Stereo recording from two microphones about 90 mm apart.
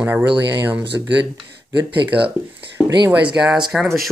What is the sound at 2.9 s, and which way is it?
Speech, 60° right (ahead or behind).